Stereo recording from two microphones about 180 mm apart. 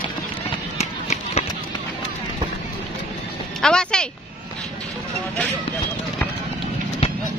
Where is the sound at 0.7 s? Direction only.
35° left (ahead or behind).